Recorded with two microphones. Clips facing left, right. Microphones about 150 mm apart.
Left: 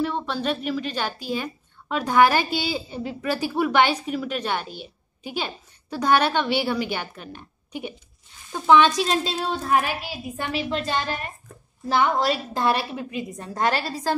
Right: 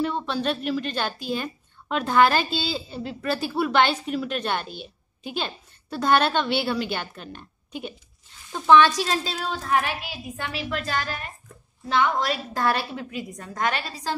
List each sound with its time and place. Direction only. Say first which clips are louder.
0.0 s a woman's voice: even; 5° left (ahead or behind); by 12.6 s 30° left (ahead or behind)
12.6 s a woman's voice: left 2 dB; 20° left (ahead or behind); by 14.1 s 45° left (ahead or behind)